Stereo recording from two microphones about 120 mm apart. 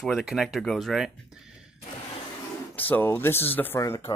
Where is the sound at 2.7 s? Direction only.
15° left (ahead or behind).